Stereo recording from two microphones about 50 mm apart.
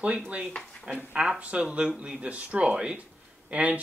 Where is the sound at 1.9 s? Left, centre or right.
Right.